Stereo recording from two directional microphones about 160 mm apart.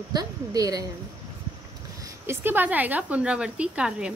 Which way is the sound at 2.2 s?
10° right (ahead or behind).